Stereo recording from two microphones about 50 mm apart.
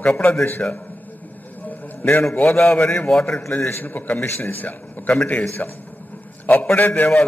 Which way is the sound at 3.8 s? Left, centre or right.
Left.